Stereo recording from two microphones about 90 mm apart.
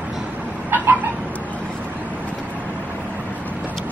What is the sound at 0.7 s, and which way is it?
Chicken, 20° right (ahead or behind).